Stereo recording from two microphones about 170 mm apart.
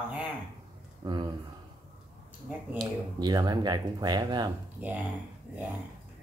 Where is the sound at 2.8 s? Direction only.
25° right (ahead or behind).